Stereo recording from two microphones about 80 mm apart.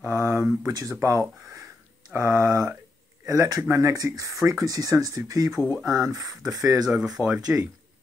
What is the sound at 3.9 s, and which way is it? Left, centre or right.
Speech, right.